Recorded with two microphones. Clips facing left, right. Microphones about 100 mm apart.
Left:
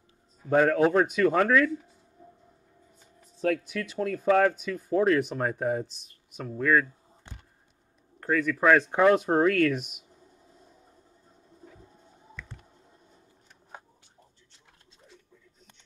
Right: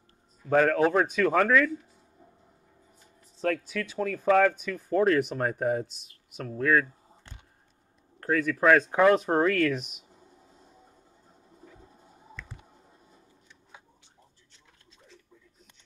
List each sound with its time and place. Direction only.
0.5 s a man's voice: 10° left (ahead or behind)
4.3 s a man's voice: 10° left (ahead or behind)
7.3 s a sound: 20° left (ahead or behind)
8.2 s speech: centre (ahead or behind)
13.5 s shuffling cards: 45° left (ahead or behind)